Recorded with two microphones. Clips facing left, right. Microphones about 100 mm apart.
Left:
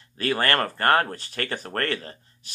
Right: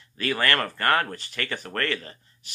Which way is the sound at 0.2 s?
35° left (ahead or behind).